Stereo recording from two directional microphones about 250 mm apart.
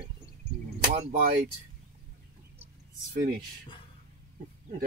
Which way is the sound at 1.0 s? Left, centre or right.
Right.